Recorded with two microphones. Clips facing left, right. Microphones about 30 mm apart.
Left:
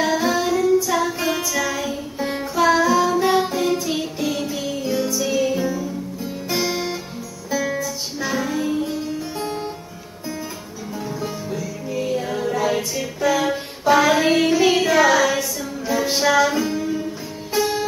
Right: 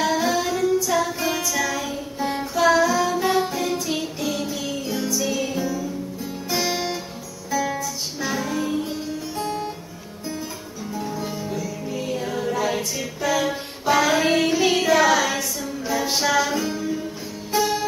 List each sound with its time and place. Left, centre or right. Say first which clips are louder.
0.0 s female singing: left 2 dB; centre
0.7 s music: left 2 dB; centre
6.7 s music: left 1 dB; centre
7.5 s music: left 1 dB; centre
9.4 s music: right 2 dB; left
11.0 s music: left 1 dB; centre